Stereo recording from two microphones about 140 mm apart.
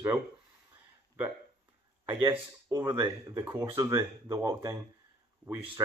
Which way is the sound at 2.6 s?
25° right (ahead or behind).